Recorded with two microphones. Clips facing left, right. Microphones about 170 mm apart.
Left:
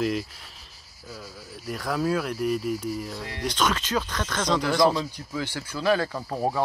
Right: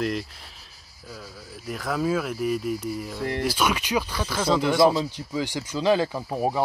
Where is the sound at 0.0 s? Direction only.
Centre (ahead or behind).